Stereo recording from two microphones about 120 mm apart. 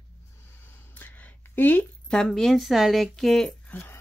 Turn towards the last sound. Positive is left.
turn(degrees=15)  # may be behind; listen again after turning